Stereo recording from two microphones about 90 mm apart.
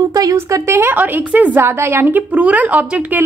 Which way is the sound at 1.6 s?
30° right (ahead or behind).